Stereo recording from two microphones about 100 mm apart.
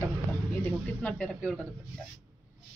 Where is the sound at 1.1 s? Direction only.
5° left (ahead or behind).